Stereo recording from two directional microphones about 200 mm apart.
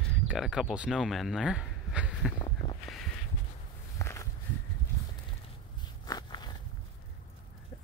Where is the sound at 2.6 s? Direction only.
25° left (ahead or behind).